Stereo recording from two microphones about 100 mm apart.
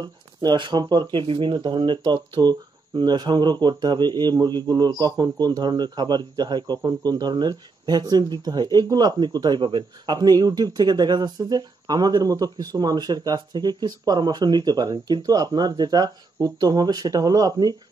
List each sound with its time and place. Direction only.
0.0 s speech: 45° right (ahead or behind)
1.2 s speech: 55° right (ahead or behind); by 17.7 s 40° right (ahead or behind)